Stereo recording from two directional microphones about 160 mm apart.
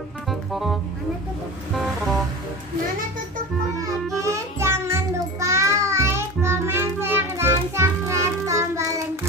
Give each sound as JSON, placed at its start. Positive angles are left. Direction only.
{"t": 0.3, "sound": "music", "side_deg": 0}
{"t": 3.8, "sound": "music", "side_deg": -20}